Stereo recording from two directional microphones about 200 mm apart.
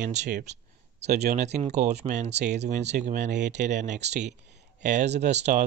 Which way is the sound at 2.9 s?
55° right (ahead or behind).